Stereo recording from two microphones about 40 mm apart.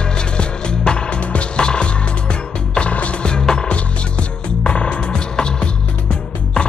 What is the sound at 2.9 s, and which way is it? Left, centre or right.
Music, left.